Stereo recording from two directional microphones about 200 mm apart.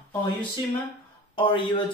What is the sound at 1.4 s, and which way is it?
Speech, 25° left (ahead or behind).